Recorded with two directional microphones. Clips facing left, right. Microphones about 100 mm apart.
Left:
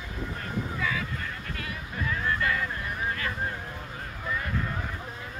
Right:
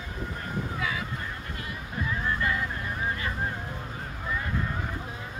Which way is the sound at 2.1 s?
15° right (ahead or behind).